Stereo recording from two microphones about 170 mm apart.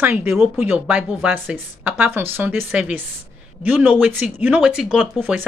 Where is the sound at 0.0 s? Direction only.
10° right (ahead or behind).